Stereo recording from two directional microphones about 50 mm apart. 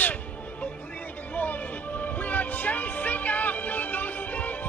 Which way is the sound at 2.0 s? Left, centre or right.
Left.